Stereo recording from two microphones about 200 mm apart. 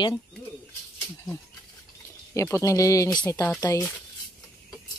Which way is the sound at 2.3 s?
15° left (ahead or behind).